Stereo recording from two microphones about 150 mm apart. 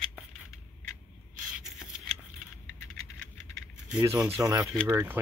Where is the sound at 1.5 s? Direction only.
5° right (ahead or behind).